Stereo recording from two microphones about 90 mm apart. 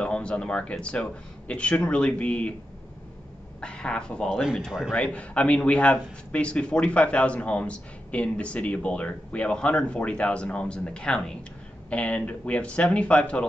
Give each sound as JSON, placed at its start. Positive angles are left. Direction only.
{"t": 0.0, "sound": "speech", "side_deg": 10}
{"t": 3.6, "sound": "speech", "side_deg": 10}
{"t": 4.3, "sound": "speech", "side_deg": -5}
{"t": 4.9, "sound": "speech", "side_deg": 15}